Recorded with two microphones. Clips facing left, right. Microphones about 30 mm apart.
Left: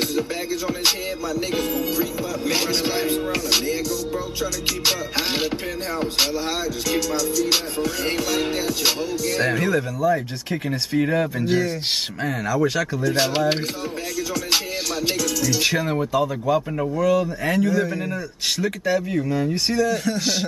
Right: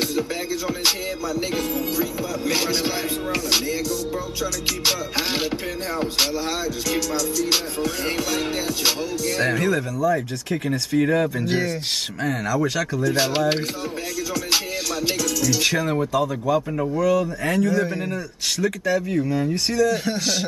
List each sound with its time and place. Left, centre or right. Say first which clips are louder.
0.0 s music: even; centre
10.1 s speech: right 1 dB; centre
11.0 s music: right 1 dB; centre
18.6 s speech: right 1 dB; centre